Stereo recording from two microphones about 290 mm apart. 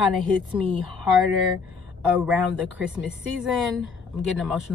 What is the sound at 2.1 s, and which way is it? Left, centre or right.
Speech, centre.